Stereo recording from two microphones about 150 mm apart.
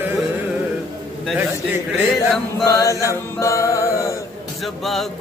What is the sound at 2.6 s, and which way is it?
Music, 25° left (ahead or behind).